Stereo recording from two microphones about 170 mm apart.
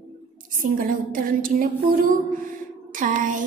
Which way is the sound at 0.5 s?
55° right (ahead or behind).